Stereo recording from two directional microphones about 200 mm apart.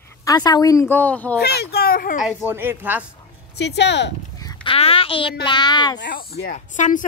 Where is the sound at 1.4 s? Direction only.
50° left (ahead or behind).